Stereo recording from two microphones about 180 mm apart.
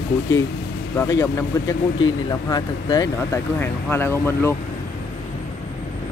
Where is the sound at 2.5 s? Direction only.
20° left (ahead or behind).